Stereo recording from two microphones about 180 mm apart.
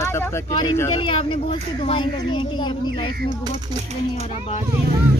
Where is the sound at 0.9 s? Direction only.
30° left (ahead or behind).